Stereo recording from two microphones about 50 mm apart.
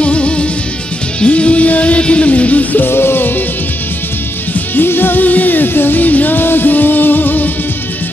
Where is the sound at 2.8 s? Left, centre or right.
Left.